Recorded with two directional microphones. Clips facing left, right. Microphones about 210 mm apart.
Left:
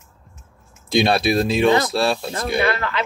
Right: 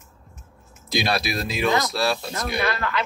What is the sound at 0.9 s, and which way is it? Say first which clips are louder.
Speech: left 7 dB; 30° left (ahead or behind).